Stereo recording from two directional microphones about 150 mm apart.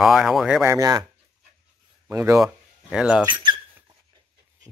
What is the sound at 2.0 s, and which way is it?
Speech, 20° right (ahead or behind).